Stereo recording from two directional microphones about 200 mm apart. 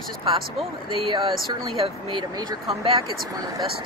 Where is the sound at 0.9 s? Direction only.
30° right (ahead or behind).